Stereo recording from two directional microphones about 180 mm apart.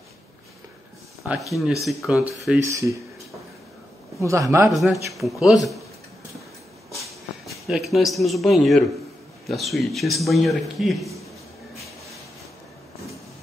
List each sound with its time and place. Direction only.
1.9 s a man's voice: centre (ahead or behind)
2.6 s a man's voice: 15° right (ahead or behind)
4.2 s a man's voice: 15° right (ahead or behind)
4.6 s a man's voice: centre (ahead or behind)
7.6 s a man's voice: centre (ahead or behind)